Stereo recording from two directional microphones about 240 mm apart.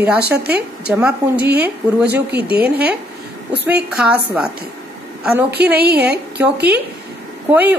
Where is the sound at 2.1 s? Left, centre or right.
Right.